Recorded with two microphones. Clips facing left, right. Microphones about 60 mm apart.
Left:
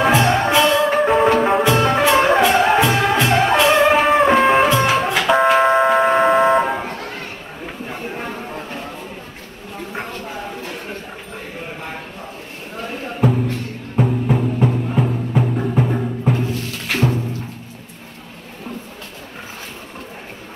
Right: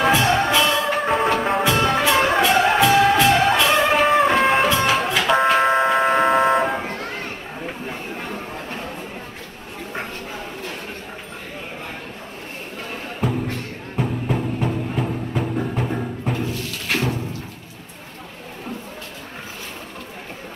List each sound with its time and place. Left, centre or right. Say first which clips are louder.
0.1 s music: left 2 dB; left
0.9 s music: left 5 dB; centre
1.6 s music: left 3 dB; left
3.9 s music: left 3 dB; centre
4.6 s music: left 3 dB; left
5.3 s vehicle: left 3 dB; centre
6.9 s a sound: even; right
13.9 s music: left 5 dB; centre
16.4 s music: left 2 dB; left